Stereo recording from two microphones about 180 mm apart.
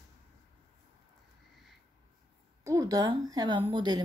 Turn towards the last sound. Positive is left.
turn(degrees=-25)  # may be behind; listen again after turning